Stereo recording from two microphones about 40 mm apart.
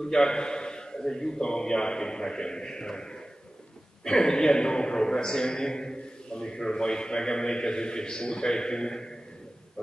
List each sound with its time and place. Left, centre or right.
0.0 s a man's voice: centre